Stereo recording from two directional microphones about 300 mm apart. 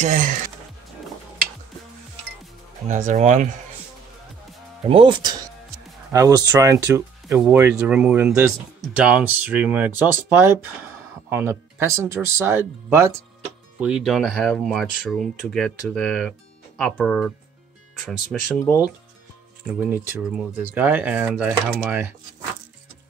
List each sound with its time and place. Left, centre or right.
0.0 s speech: right
2.9 s speech: right
4.8 s speech: centre
18.6 s speech: centre
19.6 s speech: centre